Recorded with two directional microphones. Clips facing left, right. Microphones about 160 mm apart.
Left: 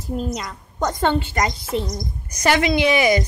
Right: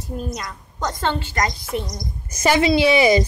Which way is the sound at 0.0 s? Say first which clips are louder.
Left 3 dB; 25° left (ahead or behind).